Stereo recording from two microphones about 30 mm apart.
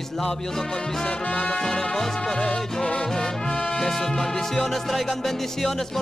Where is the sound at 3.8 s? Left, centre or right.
Centre.